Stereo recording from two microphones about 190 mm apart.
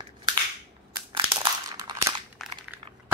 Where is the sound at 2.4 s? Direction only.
Centre (ahead or behind).